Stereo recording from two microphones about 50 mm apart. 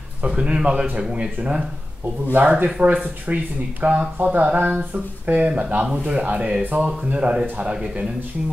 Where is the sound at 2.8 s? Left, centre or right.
Right; by 8.1 s centre.